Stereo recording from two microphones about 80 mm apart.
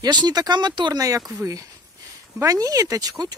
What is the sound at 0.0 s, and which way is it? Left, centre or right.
Speech, right.